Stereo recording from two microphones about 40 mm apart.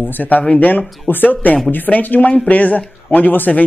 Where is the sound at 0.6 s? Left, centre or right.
Left.